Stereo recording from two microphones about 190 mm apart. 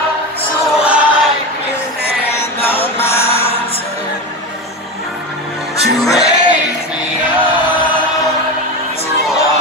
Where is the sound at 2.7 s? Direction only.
30° left (ahead or behind).